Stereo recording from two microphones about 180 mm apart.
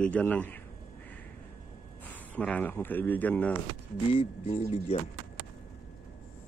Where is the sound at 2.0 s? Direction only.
10° left (ahead or behind).